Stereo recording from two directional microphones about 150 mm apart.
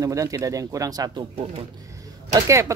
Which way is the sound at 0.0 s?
20° right (ahead or behind).